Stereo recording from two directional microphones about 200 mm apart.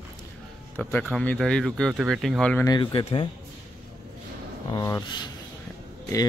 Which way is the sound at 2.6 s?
25° left (ahead or behind).